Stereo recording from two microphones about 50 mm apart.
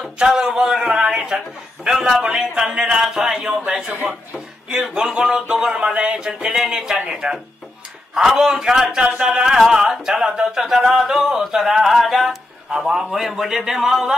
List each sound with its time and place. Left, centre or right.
0.2 s speech: centre
1.9 s a man's voice: centre
4.9 s a man's voice: centre